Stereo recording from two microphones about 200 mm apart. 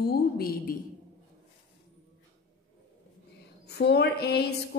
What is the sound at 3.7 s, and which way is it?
A woman's voice, 55° left (ahead or behind).